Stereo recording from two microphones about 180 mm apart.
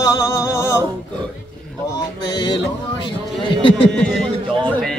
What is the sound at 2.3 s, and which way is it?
Music, 25° left (ahead or behind).